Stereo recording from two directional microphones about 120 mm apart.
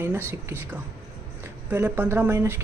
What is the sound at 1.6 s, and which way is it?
Speech, 15° right (ahead or behind).